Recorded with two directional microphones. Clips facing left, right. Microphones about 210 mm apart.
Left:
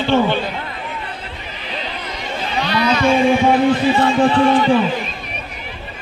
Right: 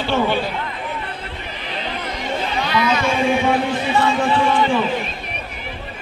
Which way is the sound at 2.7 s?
40° left (ahead or behind).